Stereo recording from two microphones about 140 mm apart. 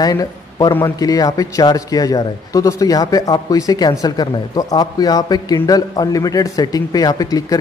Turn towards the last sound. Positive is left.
turn(degrees=25)  # may be behind; listen again after turning